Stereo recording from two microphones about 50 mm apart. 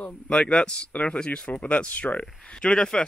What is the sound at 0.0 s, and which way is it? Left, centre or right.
Speech, left.